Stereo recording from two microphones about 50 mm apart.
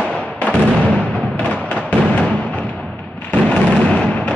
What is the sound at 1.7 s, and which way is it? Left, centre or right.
Music, left.